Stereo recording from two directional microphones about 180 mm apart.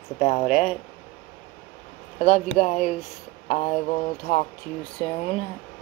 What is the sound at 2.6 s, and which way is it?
Speech, 40° left (ahead or behind).